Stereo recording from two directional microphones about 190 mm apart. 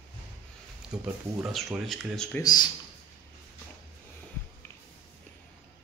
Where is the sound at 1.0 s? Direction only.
Centre (ahead or behind).